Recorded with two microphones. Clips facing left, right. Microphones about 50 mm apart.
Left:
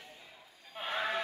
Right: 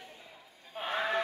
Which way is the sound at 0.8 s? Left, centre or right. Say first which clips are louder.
Right 3 dB; right.